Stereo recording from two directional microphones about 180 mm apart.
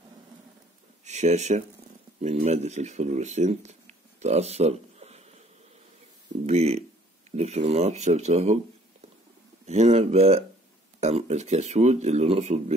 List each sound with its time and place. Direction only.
1.0 s speech: 40° right (ahead or behind)
6.4 s speech: 35° right (ahead or behind)
9.7 s speech: 35° right (ahead or behind)